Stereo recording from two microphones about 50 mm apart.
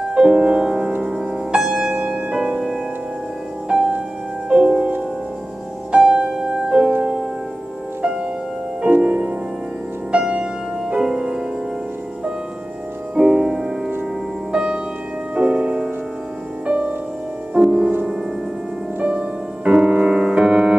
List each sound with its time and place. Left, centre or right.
0.1 s music: centre
4.5 s music: centre
13.1 s music: centre
16.6 s music: right
17.6 s music: centre
19.0 s music: right